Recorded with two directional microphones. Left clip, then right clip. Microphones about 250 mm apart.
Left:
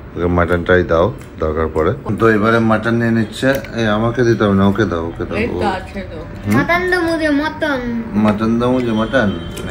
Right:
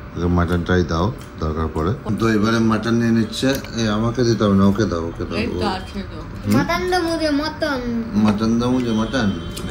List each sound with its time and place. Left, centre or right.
0.2 s speech: centre
2.1 s a woman's voice: centre; by 7.8 s right
8.1 s speech: centre